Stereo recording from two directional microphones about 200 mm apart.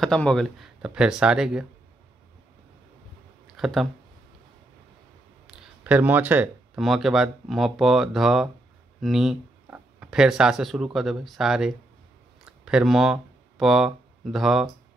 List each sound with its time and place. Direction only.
0.0 s speech: 5° left (ahead or behind)
3.5 s speech: centre (ahead or behind)
5.5 s speech: 5° right (ahead or behind)